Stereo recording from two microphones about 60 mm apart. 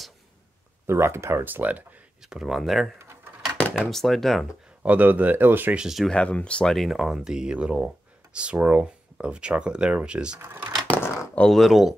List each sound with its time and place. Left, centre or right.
0.8 s speech: right
1.4 s speech: right
2.2 s speech: centre
4.8 s speech: right
5.8 s speech: centre
6.1 s speech: centre
6.7 s speech: centre
8.5 s speech: right
8.8 s speech: centre
10.4 s speech: right
10.9 s a sound: left
11.4 s speech: centre